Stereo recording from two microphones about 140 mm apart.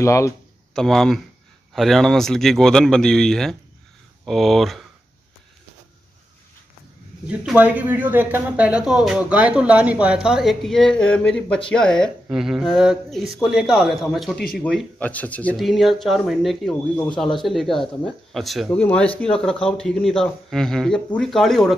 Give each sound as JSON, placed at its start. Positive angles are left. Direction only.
{"t": 0.0, "sound": "speech", "side_deg": 20}
{"t": 0.7, "sound": "speech", "side_deg": 5}
{"t": 7.2, "sound": "speech", "side_deg": -10}